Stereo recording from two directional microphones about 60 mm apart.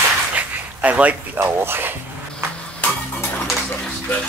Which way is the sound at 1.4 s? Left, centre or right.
Right.